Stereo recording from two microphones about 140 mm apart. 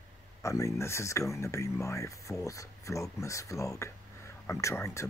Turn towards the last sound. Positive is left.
turn(degrees=20)  # may be behind; listen again after turning